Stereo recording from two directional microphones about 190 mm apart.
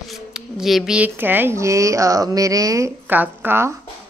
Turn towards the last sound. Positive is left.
turn(degrees=-10)  # may be behind; listen again after turning